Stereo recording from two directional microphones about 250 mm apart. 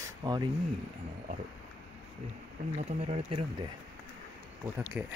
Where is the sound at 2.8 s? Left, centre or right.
Right.